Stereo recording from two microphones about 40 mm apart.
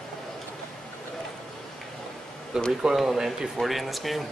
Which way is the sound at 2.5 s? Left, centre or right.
Centre.